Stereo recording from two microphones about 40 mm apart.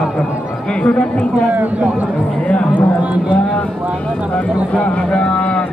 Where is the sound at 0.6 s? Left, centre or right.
Left.